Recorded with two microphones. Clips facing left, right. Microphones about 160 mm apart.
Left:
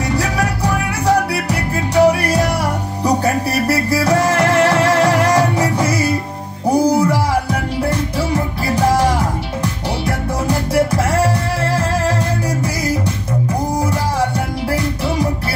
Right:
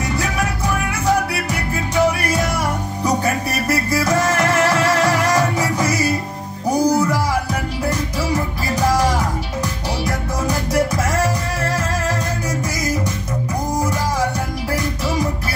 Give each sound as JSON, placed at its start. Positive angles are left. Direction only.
{"t": 0.1, "sound": "music", "side_deg": 35}
{"t": 3.6, "sound": "music", "side_deg": 30}